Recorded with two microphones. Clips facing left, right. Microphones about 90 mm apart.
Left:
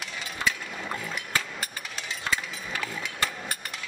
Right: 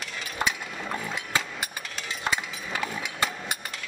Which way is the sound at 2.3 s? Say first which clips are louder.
Right 1 dB; 20° right (ahead or behind).